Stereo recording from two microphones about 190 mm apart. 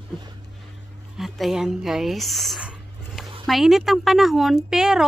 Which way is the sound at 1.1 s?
Centre (ahead or behind).